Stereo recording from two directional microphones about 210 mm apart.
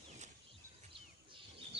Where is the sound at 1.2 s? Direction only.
25° right (ahead or behind).